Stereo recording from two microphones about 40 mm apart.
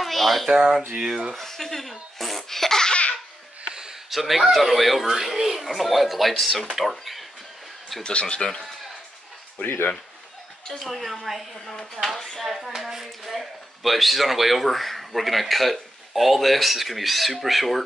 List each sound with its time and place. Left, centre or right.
0.0 s a sound: centre
0.5 s a sound: centre
1.3 s speech: centre
2.9 s laughter: left
4.1 s speech: centre
8.0 s speech: left
10.8 s speech: centre
11.7 s speech: centre
12.4 s speech: centre